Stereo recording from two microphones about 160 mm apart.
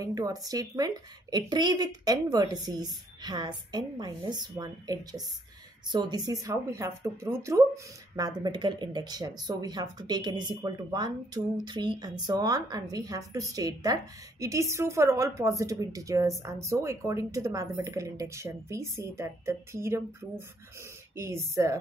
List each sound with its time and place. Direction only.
0.0 s a woman's voice: 20° right (ahead or behind)